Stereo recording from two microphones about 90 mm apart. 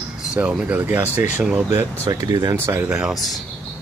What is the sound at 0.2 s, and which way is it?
Speech, 10° right (ahead or behind).